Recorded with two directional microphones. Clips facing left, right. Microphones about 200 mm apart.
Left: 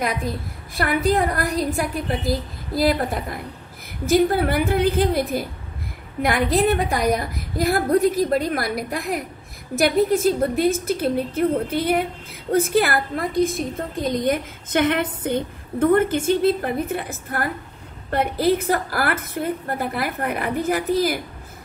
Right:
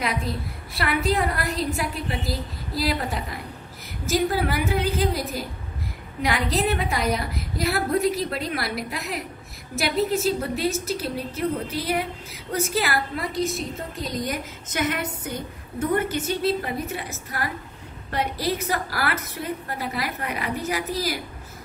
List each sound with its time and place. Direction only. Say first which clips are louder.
0.0 s a woman's voice: left 3 dB; 50° left (ahead or behind)